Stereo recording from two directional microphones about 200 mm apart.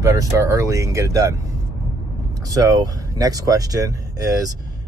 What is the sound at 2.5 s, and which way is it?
Speech, 15° right (ahead or behind).